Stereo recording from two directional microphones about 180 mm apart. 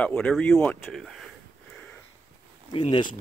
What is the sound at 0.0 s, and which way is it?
Speech, 5° left (ahead or behind).